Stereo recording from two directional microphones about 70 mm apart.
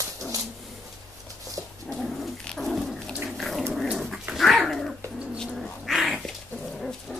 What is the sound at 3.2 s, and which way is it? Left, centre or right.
Dog, centre.